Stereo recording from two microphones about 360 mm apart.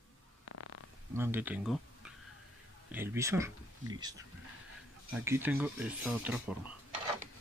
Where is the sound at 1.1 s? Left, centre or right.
Centre.